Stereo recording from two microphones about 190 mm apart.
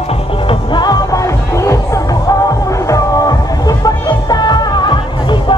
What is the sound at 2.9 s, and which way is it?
Music, 20° left (ahead or behind).